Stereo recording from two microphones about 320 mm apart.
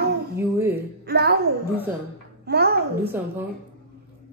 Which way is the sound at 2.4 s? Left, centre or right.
Right.